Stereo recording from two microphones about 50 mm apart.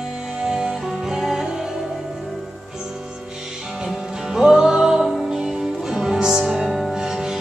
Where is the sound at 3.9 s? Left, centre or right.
Centre.